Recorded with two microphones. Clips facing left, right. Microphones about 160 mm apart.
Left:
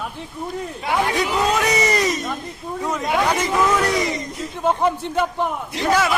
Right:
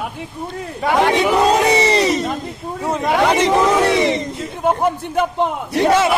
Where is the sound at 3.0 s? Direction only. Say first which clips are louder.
Right 6 dB; 75° right (ahead or behind).